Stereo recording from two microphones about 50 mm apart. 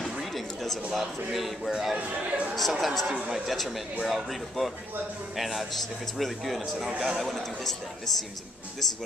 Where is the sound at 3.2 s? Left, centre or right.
Centre.